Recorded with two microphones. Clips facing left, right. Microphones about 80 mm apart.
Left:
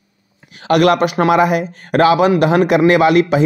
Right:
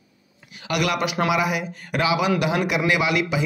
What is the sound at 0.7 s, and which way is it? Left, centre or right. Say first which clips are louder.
Speech: left 11 dB; left.